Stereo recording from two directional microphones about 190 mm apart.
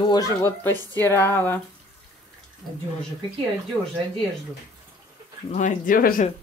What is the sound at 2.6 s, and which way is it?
Speech, centre (ahead or behind).